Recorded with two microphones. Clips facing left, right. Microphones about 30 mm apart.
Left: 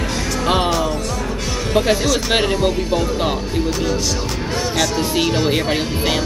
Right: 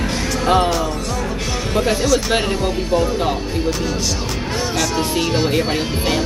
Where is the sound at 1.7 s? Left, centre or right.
Centre.